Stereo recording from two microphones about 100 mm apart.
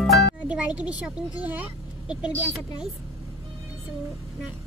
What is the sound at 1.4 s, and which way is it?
Vehicle, 15° right (ahead or behind).